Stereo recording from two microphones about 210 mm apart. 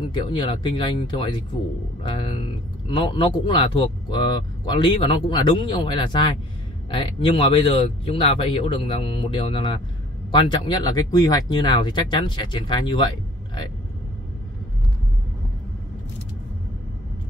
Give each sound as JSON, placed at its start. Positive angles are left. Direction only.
{"t": 0.1, "sound": "speech", "side_deg": 25}
{"t": 2.9, "sound": "speech", "side_deg": 25}